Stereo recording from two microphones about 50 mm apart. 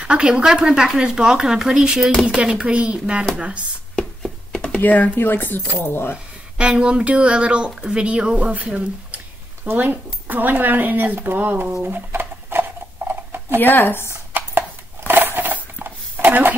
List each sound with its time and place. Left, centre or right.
0.0 s speech: centre
4.7 s speech: left
6.6 s speech: centre
9.8 s speech: right
11.9 s a sound: right
13.6 s speech: left
15.0 s a sound: right